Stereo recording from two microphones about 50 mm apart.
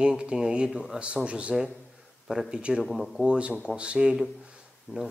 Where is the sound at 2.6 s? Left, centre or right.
Right.